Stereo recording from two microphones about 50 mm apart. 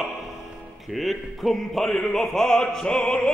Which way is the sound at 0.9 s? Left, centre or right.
Centre.